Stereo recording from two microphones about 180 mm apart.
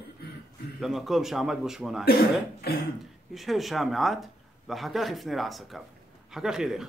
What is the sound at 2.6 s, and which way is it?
Cough, 60° left (ahead or behind).